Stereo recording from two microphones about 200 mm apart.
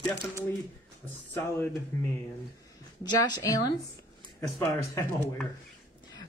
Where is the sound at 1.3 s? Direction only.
10° left (ahead or behind).